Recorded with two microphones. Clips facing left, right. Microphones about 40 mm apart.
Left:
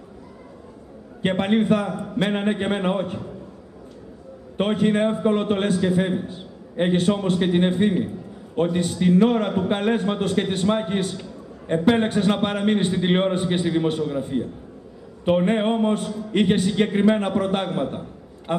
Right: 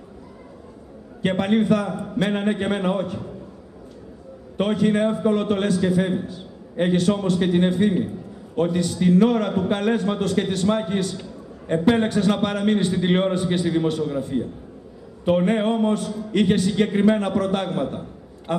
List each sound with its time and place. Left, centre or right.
1.2 s a man's voice: centre
1.9 s a man's voice: centre
4.6 s a man's voice: centre
11.1 s a sound: centre
12.1 s a man's voice: centre
16.1 s a man's voice: centre
16.3 s a man's voice: centre
18.5 s a man's voice: left